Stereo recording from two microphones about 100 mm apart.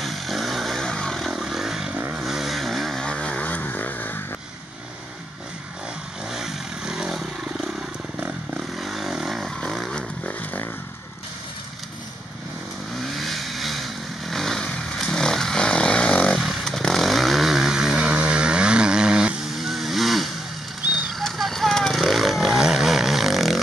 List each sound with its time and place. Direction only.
0.0 s vehicle: centre (ahead or behind)
2.0 s vehicle: 20° right (ahead or behind)
2.2 s vehicle: centre (ahead or behind); by 4.2 s 15° left (ahead or behind)
6.3 s vehicle: 5° right (ahead or behind)
8.7 s vehicle: centre (ahead or behind)
13.0 s vehicle: centre (ahead or behind)